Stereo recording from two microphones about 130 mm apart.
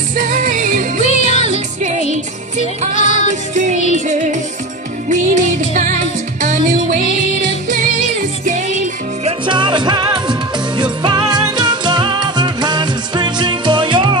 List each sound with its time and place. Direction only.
0.1 s music: 90° right
1.0 s music: 60° left (ahead or behind)
2.9 s music: 75° left (ahead or behind)
3.5 s music: 65° right (ahead or behind)
9.5 s music: 35° right (ahead or behind)